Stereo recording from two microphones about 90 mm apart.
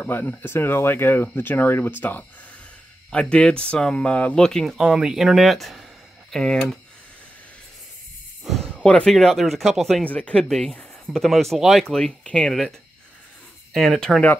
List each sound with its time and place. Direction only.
0.0 s speech: 20° left (ahead or behind); by 4.7 s 5° left (ahead or behind)
4.7 s speech: 10° right (ahead or behind)
8.5 s a sound: centre (ahead or behind)
8.8 s speech: 10° left (ahead or behind)
10.0 s speech: 15° left (ahead or behind)
13.7 s speech: 5° left (ahead or behind)